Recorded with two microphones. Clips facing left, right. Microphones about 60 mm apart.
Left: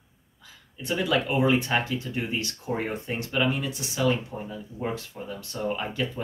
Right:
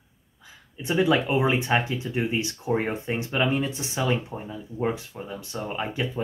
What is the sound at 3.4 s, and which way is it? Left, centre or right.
Speech, right.